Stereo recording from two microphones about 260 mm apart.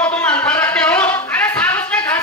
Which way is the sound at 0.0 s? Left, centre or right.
Centre.